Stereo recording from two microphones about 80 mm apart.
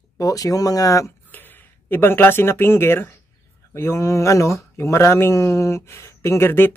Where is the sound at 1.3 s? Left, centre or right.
Left.